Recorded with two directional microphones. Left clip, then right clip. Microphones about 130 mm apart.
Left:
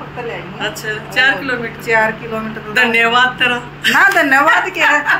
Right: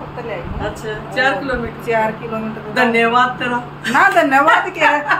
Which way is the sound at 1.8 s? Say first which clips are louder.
Left 4 dB; 10° left (ahead or behind).